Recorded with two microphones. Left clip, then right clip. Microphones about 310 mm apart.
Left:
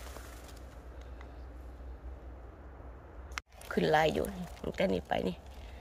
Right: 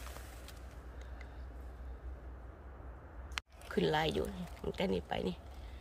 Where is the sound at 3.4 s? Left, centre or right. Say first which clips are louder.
Left 2 dB; centre.